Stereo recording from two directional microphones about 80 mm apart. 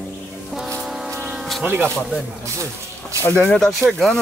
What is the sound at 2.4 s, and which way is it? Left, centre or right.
Speech, right.